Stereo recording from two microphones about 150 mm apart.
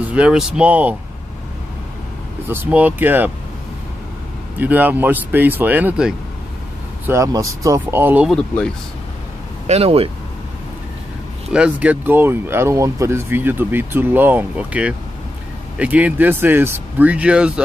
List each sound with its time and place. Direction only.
0.1 s speech: 5° right (ahead or behind)
2.4 s speech: 15° right (ahead or behind)
4.6 s speech: 10° right (ahead or behind)
7.1 s speech: 20° right (ahead or behind)
8.3 s speech: 5° left (ahead or behind)
9.7 s speech: 40° right (ahead or behind)
11.5 s speech: 10° right (ahead or behind)